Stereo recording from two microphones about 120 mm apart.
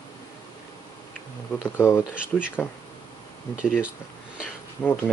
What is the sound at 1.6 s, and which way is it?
Speech, 20° left (ahead or behind).